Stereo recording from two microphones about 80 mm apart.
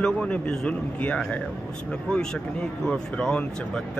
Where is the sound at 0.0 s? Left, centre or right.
Centre.